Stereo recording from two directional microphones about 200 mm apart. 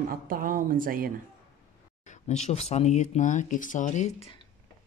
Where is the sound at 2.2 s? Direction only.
35° left (ahead or behind).